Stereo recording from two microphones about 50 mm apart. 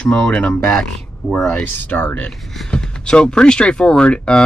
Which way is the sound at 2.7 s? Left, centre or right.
Centre.